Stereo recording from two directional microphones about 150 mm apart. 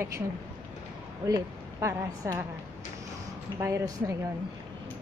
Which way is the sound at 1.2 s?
25° right (ahead or behind).